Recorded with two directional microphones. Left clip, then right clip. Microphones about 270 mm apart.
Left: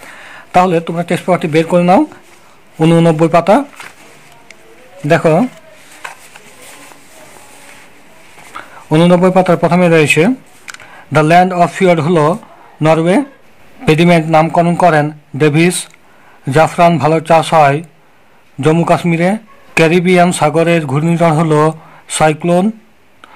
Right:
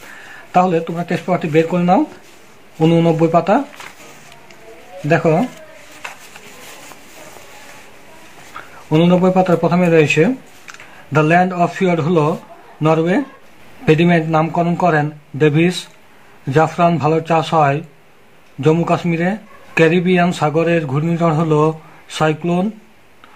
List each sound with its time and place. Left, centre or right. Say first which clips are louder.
0.3 s speech: left 4 dB; left
5.0 s speech: left 4 dB; left
6.0 s a sound: left 3 dB; left
8.5 s a man's voice: left 4 dB; left